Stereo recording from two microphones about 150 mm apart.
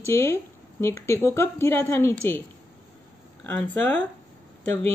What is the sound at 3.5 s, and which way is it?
Speech, 10° left (ahead or behind).